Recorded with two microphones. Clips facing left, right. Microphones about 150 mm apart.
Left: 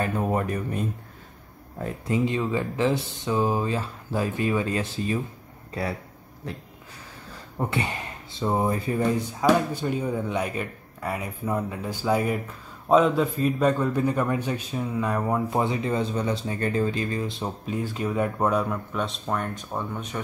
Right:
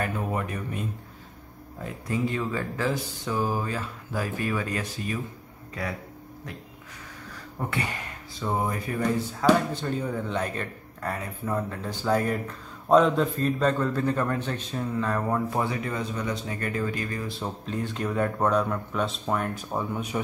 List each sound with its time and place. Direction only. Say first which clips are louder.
0.0 s speech: left 4 dB; 35° left (ahead or behind)
2.0 s speech: left 3 dB; 20° left (ahead or behind)
7.5 s speech: left 3 dB; 25° left (ahead or behind)
9.4 s a man's voice: even; 10° left (ahead or behind)
17.6 s speech: left 2 dB; 5° left (ahead or behind)